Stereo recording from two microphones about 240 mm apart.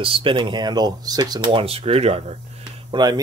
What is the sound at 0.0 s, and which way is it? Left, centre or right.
Speech, right.